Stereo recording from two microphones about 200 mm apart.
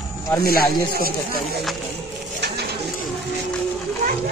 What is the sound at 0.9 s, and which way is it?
Speech, 50° right (ahead or behind).